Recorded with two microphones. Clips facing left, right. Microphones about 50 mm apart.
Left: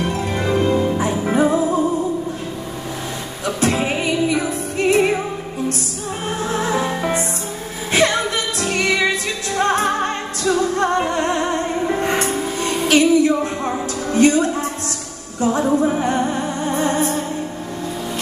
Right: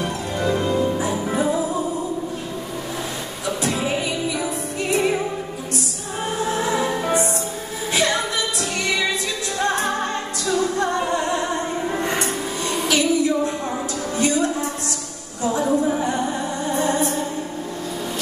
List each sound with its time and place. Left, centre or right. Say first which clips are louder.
0.0 s music: left 2 dB; left
3.6 s music: left 5 dB; left
8.5 s music: left 7 dB; left
14.1 s a sound: left 7 dB; left
15.5 s music: left 2 dB; left